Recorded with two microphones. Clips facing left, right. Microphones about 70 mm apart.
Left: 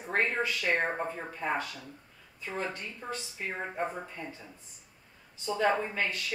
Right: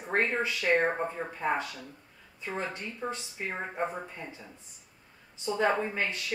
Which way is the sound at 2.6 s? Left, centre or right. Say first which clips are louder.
Right 2 dB; centre.